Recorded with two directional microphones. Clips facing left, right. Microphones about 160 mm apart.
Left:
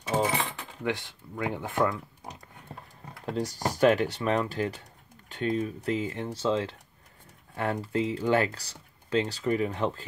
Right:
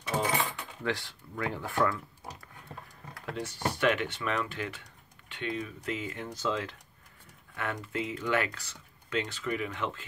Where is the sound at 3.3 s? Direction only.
40° left (ahead or behind).